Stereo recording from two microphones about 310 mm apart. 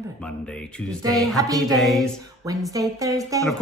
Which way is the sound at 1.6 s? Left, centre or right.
Centre.